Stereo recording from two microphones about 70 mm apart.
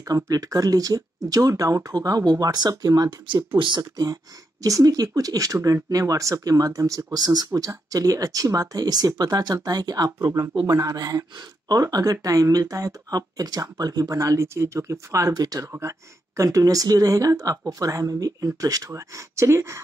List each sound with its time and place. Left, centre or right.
0.0 s speech: right
2.7 s speech: right
10.2 s speech: right
15.7 s speech: right
16.4 s speech: right
18.9 s speech: right